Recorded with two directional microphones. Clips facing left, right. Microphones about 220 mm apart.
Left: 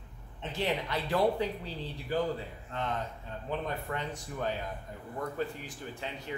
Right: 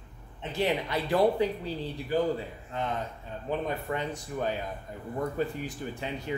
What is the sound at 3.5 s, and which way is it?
Speech, 10° right (ahead or behind).